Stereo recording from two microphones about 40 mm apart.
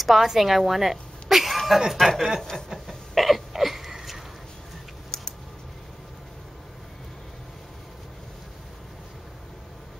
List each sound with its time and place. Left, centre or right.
0.0 s a woman's voice: centre
2.9 s hiccup: centre
5.1 s typing: left